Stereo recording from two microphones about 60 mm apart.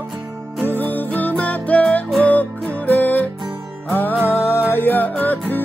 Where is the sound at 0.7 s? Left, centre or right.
Left.